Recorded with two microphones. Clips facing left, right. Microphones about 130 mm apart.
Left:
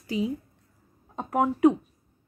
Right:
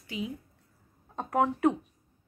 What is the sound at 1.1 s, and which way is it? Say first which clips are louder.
Speech: left 2 dB; 10° left (ahead or behind).